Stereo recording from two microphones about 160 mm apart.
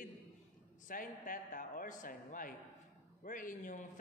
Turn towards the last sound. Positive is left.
turn(degrees=55)  # may be behind; listen again after turning